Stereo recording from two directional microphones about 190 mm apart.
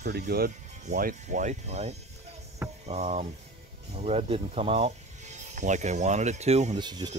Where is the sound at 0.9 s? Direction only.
45° right (ahead or behind).